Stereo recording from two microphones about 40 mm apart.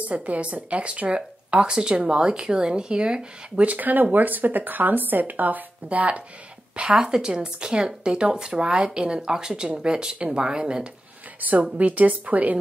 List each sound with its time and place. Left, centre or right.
0.0 s speech: right
3.6 s speech: right
5.9 s speech: right
7.0 s speech: centre
11.8 s speech: right